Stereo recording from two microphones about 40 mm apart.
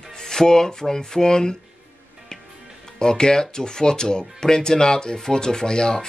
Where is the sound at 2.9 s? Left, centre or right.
Centre.